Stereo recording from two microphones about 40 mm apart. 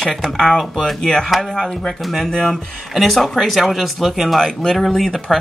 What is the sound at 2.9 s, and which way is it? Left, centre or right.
Speech, centre.